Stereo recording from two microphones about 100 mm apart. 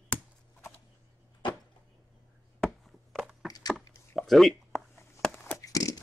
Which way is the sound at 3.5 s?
40° left (ahead or behind).